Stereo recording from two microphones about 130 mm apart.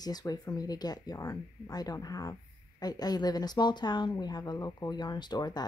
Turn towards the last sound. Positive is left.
turn(degrees=35)  # may be behind; listen again after turning